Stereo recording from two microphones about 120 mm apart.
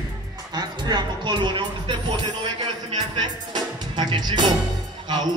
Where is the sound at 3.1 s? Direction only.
40° right (ahead or behind).